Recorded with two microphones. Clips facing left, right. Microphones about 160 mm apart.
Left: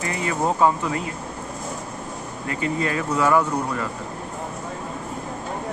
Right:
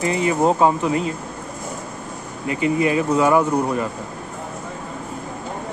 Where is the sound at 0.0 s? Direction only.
20° right (ahead or behind).